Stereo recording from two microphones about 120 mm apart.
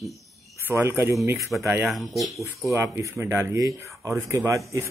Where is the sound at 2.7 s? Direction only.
20° right (ahead or behind).